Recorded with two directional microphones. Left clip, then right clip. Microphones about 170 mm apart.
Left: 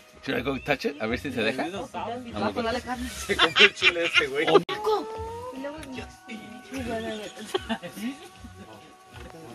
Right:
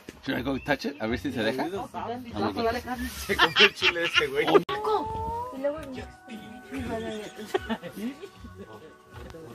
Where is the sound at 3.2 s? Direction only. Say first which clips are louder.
Left 1 dB; centre (ahead or behind).